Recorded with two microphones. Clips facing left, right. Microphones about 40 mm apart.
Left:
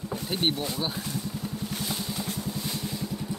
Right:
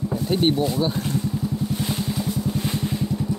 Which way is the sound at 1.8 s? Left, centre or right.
Right.